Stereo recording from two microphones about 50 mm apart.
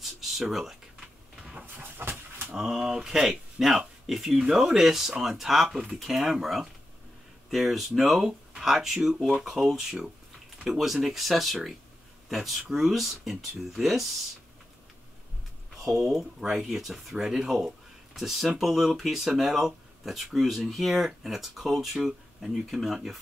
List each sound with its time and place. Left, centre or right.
0.0 s a sound: centre
1.4 s dog: right
1.8 s dog: right
2.5 s speech: centre
15.7 s a sound: centre
16.1 s speech: centre